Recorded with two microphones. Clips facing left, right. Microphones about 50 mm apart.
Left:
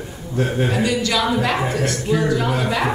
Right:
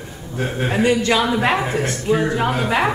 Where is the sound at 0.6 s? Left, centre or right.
Right.